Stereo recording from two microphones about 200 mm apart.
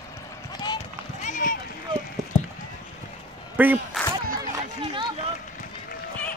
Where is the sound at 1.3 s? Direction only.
40° left (ahead or behind).